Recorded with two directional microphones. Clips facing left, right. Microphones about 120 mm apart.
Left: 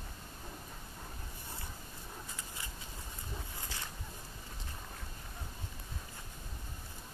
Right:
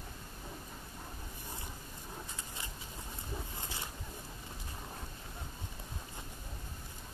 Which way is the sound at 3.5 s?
20° right (ahead or behind).